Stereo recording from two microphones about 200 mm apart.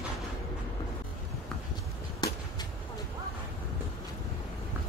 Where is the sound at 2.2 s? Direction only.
20° left (ahead or behind).